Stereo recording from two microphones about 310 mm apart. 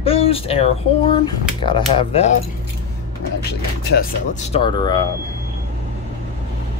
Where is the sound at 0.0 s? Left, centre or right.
Centre.